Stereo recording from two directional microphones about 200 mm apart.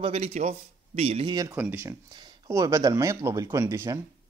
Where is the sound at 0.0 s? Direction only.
30° right (ahead or behind); by 4.0 s 15° right (ahead or behind).